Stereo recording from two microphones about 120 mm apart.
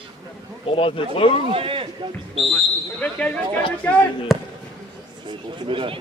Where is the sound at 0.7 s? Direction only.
50° left (ahead or behind).